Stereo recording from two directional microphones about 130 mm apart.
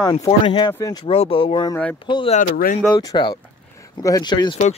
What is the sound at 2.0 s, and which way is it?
Speech, 40° left (ahead or behind).